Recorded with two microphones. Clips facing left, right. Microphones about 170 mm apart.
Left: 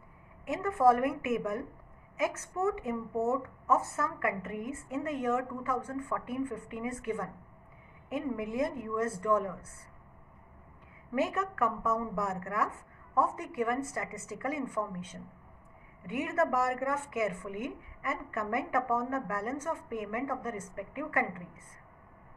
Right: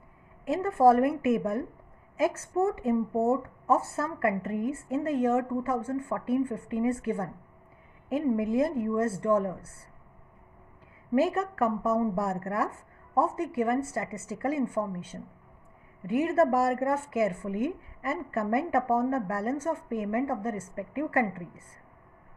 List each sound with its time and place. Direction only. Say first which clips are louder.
0.5 s a woman's voice: right 4 dB; 30° right (ahead or behind)
11.1 s a woman's voice: right 5 dB; 30° right (ahead or behind)